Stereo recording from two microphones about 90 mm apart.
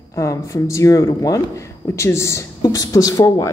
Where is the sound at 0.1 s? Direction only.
35° left (ahead or behind).